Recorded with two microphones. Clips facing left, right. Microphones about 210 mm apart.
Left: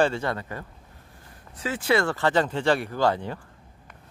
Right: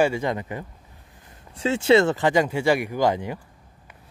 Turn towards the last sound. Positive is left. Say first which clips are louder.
# right 2 dB
turn(degrees=-15)  # may be behind; listen again after turning